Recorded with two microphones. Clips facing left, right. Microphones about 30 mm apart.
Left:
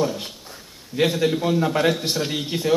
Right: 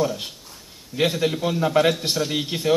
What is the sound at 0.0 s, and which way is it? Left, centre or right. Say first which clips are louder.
A man's voice: even; centre.